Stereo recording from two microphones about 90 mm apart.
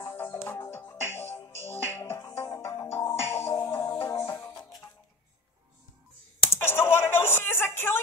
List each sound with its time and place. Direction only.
0.1 s music: 25° left (ahead or behind); by 2.9 s 45° left (ahead or behind)
2.9 s music: 35° left (ahead or behind)
6.6 s a sound: 25° left (ahead or behind)